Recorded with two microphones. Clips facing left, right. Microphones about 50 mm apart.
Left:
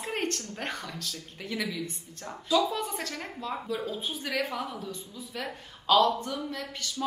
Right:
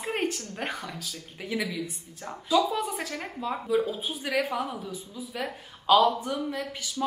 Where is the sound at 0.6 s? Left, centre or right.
Centre.